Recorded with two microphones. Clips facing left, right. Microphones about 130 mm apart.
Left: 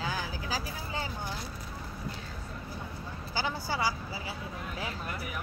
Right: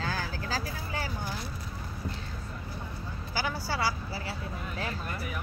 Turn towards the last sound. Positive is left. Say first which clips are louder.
# right 1 dB
turn(degrees=15)  # may be behind; listen again after turning